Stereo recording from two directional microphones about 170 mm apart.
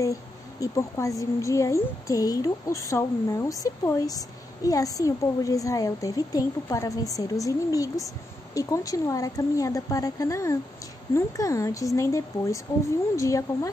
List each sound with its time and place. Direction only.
0.0 s a woman's voice: 20° left (ahead or behind)